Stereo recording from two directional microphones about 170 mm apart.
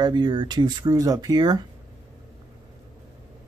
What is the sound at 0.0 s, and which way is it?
Speech, 25° right (ahead or behind).